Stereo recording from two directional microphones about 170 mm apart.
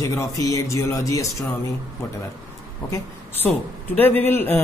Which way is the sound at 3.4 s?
10° left (ahead or behind).